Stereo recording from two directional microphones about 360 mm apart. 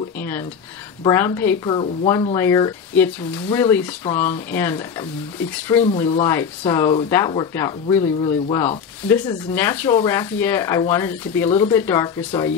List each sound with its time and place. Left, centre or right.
0.2 s a sound: centre
1.0 s speech: centre
5.9 s speech: centre